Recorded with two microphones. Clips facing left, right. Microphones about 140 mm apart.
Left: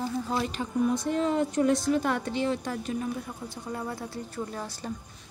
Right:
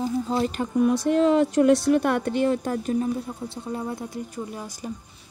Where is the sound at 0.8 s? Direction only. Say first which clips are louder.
Right 8 dB; 75° right (ahead or behind); by 3.0 s 45° right (ahead or behind).